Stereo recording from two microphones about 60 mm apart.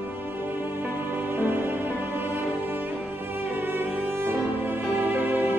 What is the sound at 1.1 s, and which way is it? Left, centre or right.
Music, right.